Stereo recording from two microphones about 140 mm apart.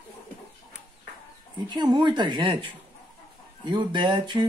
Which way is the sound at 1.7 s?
30° right (ahead or behind).